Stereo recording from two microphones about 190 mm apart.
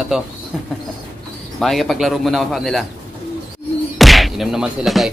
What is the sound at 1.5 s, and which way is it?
Speech, centre (ahead or behind).